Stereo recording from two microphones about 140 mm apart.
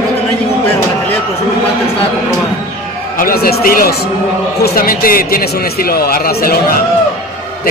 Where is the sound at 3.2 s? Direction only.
90° left.